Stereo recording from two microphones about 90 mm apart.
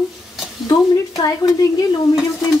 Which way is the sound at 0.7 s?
45° left (ahead or behind).